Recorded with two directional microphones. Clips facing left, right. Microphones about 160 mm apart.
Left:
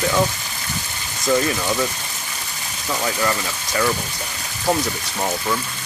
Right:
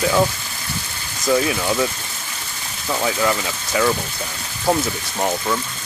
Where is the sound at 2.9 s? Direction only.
10° right (ahead or behind).